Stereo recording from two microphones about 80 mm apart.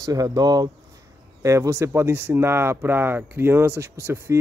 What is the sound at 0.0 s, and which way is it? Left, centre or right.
Speech, right.